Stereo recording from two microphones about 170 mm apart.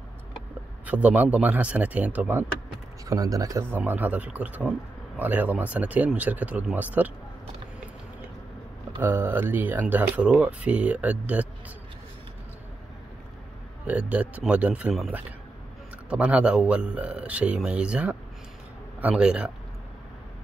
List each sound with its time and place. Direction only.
0.8 s speech: 10° right (ahead or behind)
3.1 s speech: 20° right (ahead or behind)
9.0 s speech: 10° right (ahead or behind)
13.8 s speech: 10° right (ahead or behind)